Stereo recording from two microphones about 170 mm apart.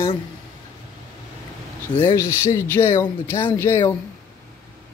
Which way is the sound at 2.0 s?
15° left (ahead or behind).